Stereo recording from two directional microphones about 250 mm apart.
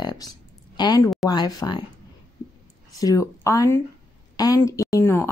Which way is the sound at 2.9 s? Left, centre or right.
Centre.